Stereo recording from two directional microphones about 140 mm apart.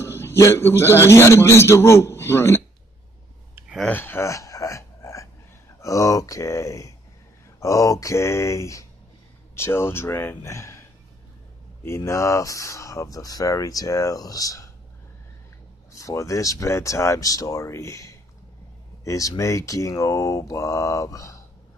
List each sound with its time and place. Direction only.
0.0 s a man's voice: 15° left (ahead or behind)
3.9 s a sound: 15° left (ahead or behind)
5.8 s speech: 20° left (ahead or behind)
15.9 s speech: 20° left (ahead or behind)